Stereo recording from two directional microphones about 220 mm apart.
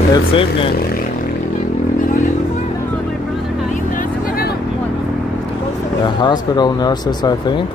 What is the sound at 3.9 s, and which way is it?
Vehicle, 40° left (ahead or behind).